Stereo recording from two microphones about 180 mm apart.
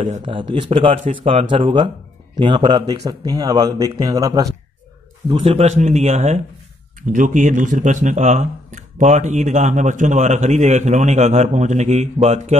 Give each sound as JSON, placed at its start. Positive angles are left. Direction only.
{"t": 0.2, "sound": "speech", "side_deg": -30}
{"t": 5.3, "sound": "speech", "side_deg": -30}